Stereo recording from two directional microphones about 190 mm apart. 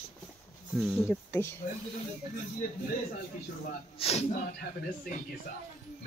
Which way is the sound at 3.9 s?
30° left (ahead or behind).